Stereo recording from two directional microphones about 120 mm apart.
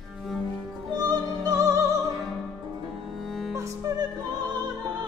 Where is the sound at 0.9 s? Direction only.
35° right (ahead or behind).